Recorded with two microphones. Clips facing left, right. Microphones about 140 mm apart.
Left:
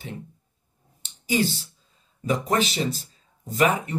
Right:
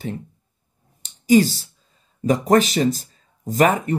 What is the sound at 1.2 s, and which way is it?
Speech, 40° right (ahead or behind).